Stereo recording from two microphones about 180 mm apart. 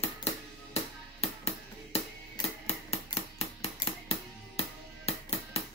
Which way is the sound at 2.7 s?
35° left (ahead or behind).